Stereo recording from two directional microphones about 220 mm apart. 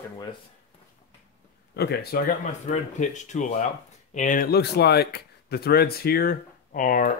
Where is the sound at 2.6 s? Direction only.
35° left (ahead or behind).